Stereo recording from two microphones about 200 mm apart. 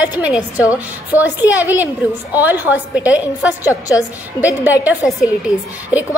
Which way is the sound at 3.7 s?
15° left (ahead or behind).